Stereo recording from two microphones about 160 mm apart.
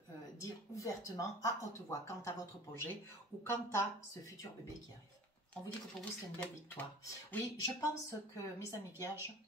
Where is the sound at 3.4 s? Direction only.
20° left (ahead or behind).